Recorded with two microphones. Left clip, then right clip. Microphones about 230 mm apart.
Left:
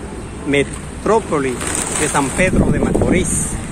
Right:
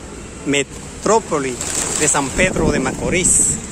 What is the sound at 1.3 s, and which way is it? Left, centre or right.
Speech, centre.